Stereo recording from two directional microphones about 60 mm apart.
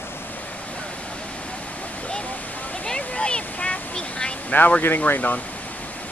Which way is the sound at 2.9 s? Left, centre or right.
Centre.